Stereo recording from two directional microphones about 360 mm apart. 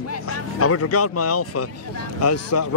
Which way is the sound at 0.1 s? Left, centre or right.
Left.